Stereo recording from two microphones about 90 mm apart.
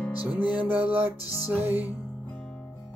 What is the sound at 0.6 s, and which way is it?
Music, 20° right (ahead or behind).